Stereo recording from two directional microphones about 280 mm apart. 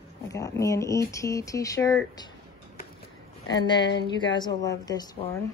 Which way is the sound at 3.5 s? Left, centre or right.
Centre.